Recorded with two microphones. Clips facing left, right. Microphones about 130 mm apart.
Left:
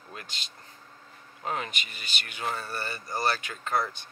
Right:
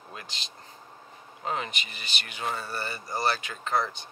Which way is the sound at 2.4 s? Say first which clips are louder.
Right 1 dB; 5° right (ahead or behind).